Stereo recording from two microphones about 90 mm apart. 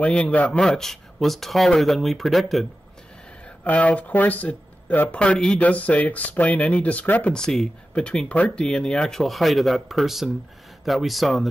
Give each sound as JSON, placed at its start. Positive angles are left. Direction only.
{"t": 0.0, "sound": "speech", "side_deg": 15}
{"t": 0.5, "sound": "speech", "side_deg": 5}
{"t": 3.6, "sound": "speech", "side_deg": 15}
{"t": 7.3, "sound": "speech", "side_deg": 5}